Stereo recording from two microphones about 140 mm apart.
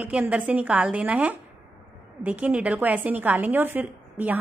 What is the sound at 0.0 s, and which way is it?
A woman's voice, 10° right (ahead or behind).